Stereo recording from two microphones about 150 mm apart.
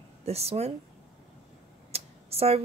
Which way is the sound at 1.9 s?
40° right (ahead or behind).